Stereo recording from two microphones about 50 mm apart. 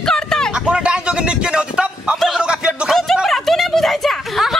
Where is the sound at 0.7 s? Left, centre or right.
Centre.